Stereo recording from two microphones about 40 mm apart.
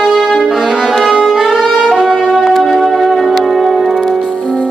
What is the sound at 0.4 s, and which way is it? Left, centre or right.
Brass instrument, centre.